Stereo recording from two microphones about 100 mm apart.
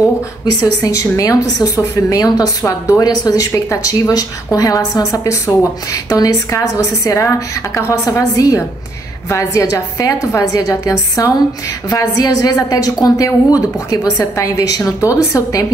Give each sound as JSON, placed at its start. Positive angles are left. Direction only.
{"t": 0.6, "sound": "speech", "side_deg": 30}